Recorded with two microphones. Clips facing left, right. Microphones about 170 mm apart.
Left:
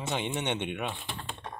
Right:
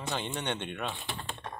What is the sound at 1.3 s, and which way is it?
Tap, 5° left (ahead or behind).